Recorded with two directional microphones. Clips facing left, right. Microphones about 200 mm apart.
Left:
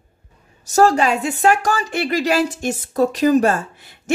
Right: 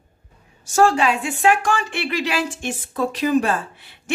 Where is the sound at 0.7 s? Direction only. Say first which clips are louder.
Left 2 dB; 40° left (ahead or behind).